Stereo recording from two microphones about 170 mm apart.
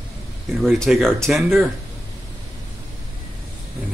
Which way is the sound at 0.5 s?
Centre (ahead or behind).